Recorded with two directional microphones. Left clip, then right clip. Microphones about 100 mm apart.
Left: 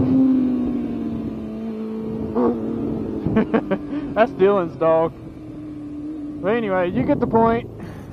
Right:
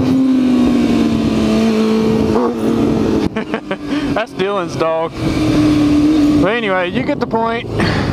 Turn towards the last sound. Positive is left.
turn(degrees=-15)  # may be behind; listen again after turning